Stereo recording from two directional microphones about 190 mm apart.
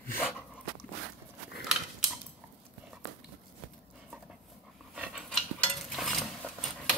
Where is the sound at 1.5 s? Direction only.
5° right (ahead or behind).